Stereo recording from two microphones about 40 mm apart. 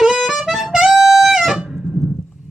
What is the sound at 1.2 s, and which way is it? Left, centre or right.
Music, centre.